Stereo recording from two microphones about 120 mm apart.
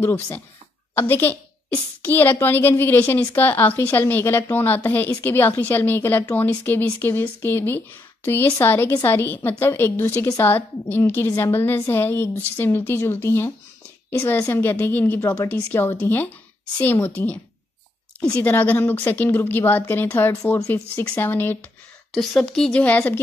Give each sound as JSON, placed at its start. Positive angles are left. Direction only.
{"t": 0.0, "sound": "a woman's voice", "side_deg": 20}
{"t": 22.1, "sound": "a woman's voice", "side_deg": 5}